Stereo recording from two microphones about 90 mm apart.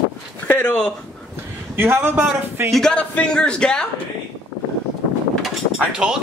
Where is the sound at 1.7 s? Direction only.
25° right (ahead or behind).